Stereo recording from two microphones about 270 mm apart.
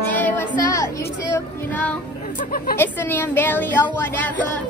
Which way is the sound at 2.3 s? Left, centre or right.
Left.